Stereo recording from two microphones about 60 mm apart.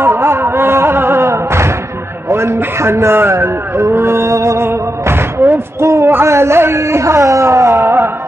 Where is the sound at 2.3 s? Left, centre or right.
Right.